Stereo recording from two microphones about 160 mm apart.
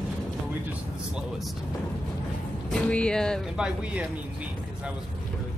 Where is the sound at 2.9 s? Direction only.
5° left (ahead or behind).